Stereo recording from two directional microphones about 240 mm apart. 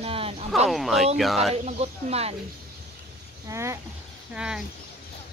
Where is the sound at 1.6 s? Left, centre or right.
Right.